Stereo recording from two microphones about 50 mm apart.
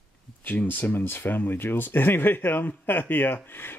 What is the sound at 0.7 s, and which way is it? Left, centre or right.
Speech, left.